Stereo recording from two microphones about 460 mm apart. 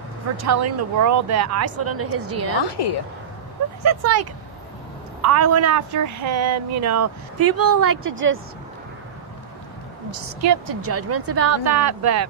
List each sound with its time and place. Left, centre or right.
0.4 s speech: right
2.6 s a woman's voice: left
3.8 s speech: right
7.6 s speech: right
10.4 s speech: right